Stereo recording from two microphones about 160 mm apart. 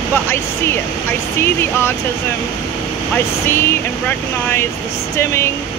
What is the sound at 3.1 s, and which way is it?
Speech, 15° left (ahead or behind).